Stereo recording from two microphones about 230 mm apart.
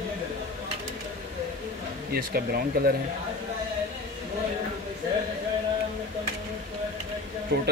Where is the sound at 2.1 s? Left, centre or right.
Right.